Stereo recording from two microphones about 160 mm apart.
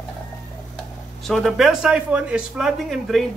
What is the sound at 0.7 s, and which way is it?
Speech, centre (ahead or behind).